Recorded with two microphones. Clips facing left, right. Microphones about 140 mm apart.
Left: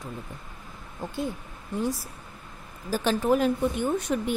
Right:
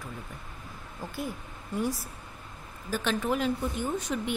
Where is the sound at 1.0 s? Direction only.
25° left (ahead or behind).